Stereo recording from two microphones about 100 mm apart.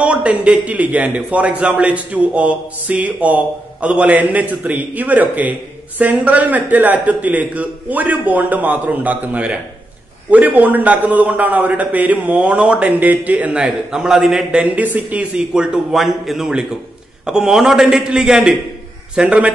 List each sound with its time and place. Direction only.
0.0 s a man's voice: 10° right (ahead or behind)